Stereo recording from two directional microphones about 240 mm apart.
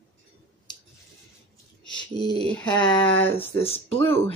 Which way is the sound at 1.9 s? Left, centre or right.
Centre.